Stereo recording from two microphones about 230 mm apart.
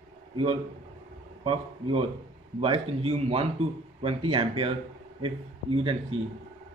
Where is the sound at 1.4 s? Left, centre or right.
Right.